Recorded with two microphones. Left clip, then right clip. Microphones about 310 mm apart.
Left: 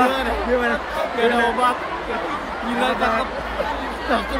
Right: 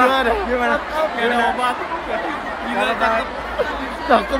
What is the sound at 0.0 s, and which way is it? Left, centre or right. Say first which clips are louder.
Speech: right 4 dB; centre.